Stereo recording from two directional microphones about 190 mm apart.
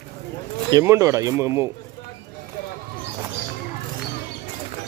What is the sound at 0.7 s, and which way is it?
Speech, 15° right (ahead or behind).